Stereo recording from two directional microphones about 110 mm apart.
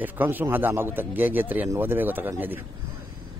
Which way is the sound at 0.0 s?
15° right (ahead or behind).